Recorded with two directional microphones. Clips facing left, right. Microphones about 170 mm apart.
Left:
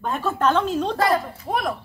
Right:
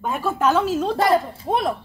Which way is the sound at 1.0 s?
25° right (ahead or behind).